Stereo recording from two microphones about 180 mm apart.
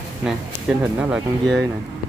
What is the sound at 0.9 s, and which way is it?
Speech, 10° right (ahead or behind).